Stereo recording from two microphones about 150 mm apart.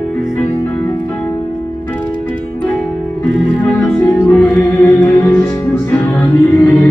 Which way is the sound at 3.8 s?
15° left (ahead or behind).